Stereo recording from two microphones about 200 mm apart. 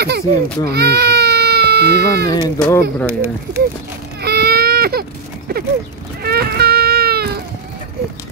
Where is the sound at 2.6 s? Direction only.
10° left (ahead or behind).